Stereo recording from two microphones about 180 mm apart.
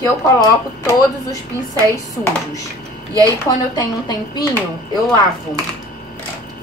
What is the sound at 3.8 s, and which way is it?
Speech, 25° left (ahead or behind).